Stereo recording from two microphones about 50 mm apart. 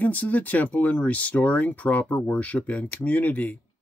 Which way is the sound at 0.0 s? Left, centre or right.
Left.